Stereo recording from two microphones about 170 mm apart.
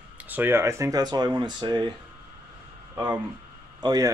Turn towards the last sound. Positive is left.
turn(degrees=-20)  # may be behind; listen again after turning